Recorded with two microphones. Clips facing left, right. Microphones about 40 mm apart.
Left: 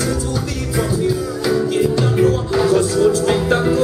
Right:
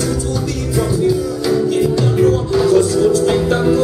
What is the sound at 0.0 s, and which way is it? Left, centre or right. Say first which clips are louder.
Music: right 2 dB; centre.